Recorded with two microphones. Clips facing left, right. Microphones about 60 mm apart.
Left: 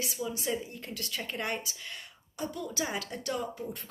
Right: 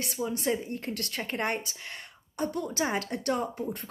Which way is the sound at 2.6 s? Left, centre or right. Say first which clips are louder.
Right 5 dB; right.